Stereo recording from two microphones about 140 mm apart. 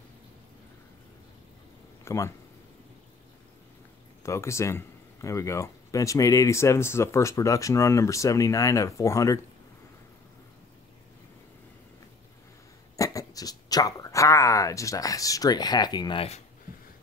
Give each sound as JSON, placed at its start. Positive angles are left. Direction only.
{"t": 2.0, "sound": "speech", "side_deg": 20}
{"t": 4.2, "sound": "speech", "side_deg": 20}
{"t": 12.9, "sound": "a sound", "side_deg": 25}